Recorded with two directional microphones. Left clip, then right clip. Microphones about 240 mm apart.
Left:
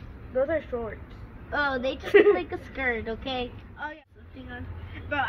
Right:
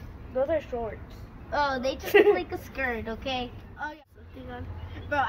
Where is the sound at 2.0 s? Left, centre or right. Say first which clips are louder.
Left 1 dB; left.